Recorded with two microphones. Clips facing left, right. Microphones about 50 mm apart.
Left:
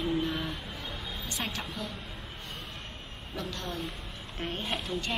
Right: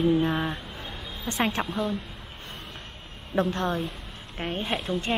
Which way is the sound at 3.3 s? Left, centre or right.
Right.